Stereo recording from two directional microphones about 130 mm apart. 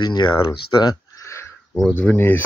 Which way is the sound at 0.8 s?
25° left (ahead or behind).